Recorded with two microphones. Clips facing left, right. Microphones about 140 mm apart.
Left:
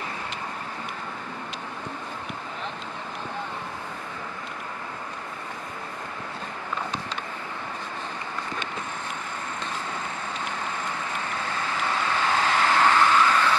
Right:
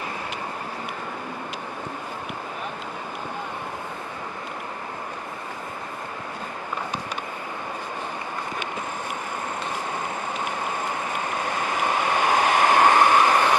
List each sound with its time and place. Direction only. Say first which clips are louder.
11.3 s vehicle: right 4 dB; 15° right (ahead or behind)